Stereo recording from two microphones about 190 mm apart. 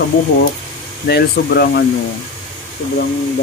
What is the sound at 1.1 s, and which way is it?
Speech, 55° left (ahead or behind).